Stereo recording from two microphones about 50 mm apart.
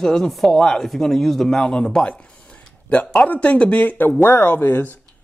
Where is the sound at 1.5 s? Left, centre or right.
Centre; by 4.1 s left.